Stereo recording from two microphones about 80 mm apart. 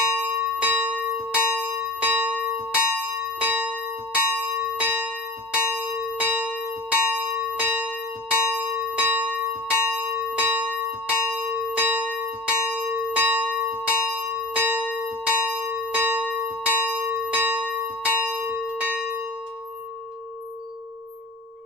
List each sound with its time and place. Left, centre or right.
0.1 s church bell: centre
13.8 s bell: centre
15.6 s church bell: right
16.3 s bell: centre
16.6 s church bell: right